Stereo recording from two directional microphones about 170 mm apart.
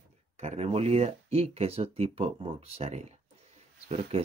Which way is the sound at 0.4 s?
40° right (ahead or behind).